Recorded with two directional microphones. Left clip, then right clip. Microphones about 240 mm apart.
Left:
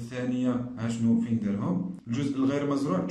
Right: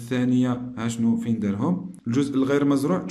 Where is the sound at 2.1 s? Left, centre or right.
Right.